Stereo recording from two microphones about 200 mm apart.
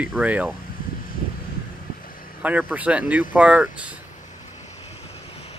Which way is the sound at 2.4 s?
5° right (ahead or behind).